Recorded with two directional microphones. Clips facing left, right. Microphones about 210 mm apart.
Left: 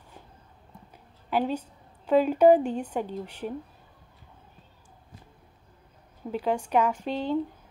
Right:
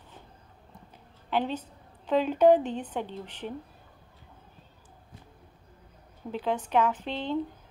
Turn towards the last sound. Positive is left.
turn(degrees=10)  # may be behind; listen again after turning